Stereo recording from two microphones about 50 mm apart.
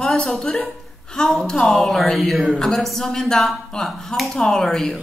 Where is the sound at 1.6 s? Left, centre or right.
Centre.